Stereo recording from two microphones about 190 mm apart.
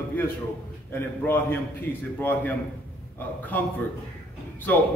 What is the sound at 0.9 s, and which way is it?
A man's voice, 10° left (ahead or behind).